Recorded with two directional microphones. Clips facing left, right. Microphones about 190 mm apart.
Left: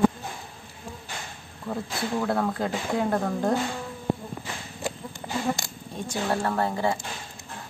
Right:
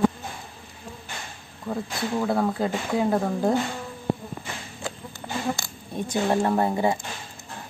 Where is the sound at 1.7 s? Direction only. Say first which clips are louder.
Right 1 dB; centre (ahead or behind).